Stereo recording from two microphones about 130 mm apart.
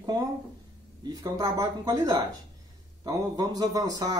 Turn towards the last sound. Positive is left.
turn(degrees=-30)  # may be behind; listen again after turning